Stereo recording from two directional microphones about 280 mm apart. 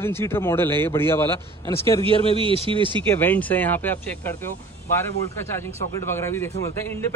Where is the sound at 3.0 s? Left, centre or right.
Centre.